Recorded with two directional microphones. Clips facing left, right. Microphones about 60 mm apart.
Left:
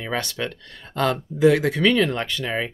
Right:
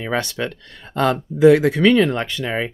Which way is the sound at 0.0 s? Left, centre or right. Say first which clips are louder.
Right 4 dB; right.